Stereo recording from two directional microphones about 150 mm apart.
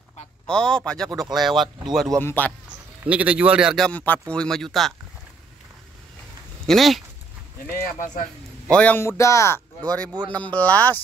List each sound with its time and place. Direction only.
0.5 s a man's voice: 5° left (ahead or behind)
2.1 s a man's voice: 10° left (ahead or behind)
3.0 s a man's voice: 10° right (ahead or behind)
6.6 s speech: centre (ahead or behind)
7.6 s speech: 70° left (ahead or behind)
8.6 s a man's voice: 10° left (ahead or behind)
9.8 s a man's voice: 10° left (ahead or behind)